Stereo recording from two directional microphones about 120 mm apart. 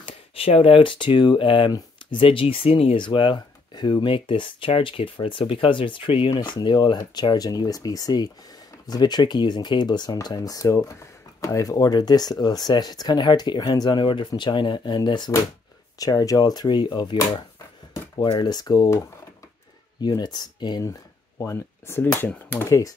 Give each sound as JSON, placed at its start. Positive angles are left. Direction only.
{"t": 0.0, "sound": "speech", "side_deg": 50}
{"t": 1.7, "sound": "a sound", "side_deg": 30}
{"t": 2.1, "sound": "speech", "side_deg": 50}
{"t": 21.4, "sound": "speech", "side_deg": 20}
{"t": 22.7, "sound": "speech", "side_deg": 25}